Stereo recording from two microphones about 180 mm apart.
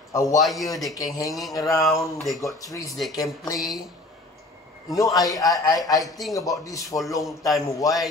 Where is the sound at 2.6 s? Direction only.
20° left (ahead or behind).